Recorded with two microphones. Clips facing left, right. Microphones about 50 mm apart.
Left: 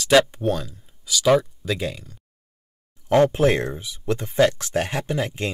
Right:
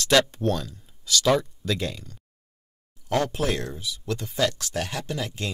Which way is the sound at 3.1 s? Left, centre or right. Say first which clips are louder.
Left 8 dB; left.